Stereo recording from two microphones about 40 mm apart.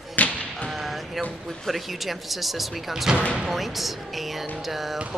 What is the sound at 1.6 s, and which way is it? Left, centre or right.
Speech, centre.